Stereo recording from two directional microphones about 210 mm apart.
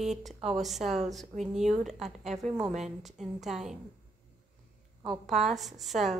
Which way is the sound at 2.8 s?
Centre (ahead or behind).